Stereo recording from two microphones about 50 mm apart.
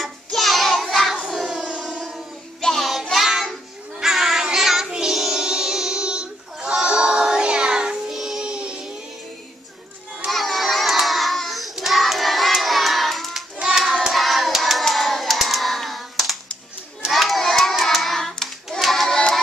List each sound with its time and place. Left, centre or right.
0.0 s child singing: centre
1.2 s a sound: centre
1.6 s music: right
2.6 s child singing: centre
8.1 s child singing: centre
8.4 s music: centre
10.3 s child singing: centre
13.6 s hands: centre